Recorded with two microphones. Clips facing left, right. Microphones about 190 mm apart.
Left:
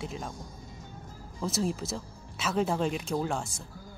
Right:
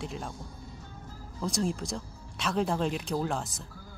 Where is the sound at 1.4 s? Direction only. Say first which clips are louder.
Even; 5° left (ahead or behind).